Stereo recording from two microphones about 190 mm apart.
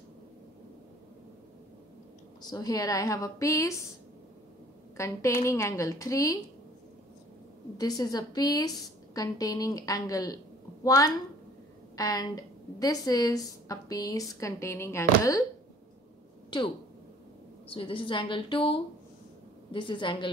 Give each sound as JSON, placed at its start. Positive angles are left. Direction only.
{"t": 2.4, "sound": "a woman's voice", "side_deg": 20}
{"t": 4.9, "sound": "a woman's voice", "side_deg": 15}
{"t": 7.7, "sound": "a woman's voice", "side_deg": 20}
{"t": 16.4, "sound": "a sound", "side_deg": 25}
{"t": 17.6, "sound": "a woman's voice", "side_deg": 30}